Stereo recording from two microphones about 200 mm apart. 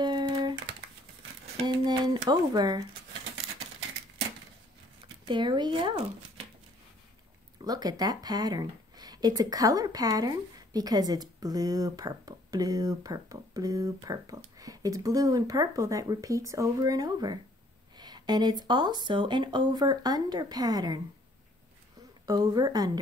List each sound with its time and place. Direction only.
0.0 s a sound: 20° right (ahead or behind)
1.6 s speech: 20° right (ahead or behind)
5.3 s speech: 20° right (ahead or behind)
7.6 s speech: 20° right (ahead or behind)
22.2 s speech: 20° right (ahead or behind)